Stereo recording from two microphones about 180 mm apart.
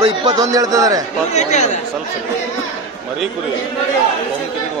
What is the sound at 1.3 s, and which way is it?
Speech, 40° left (ahead or behind).